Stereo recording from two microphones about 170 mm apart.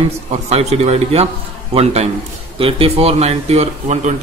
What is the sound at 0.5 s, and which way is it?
Speech, 40° right (ahead or behind).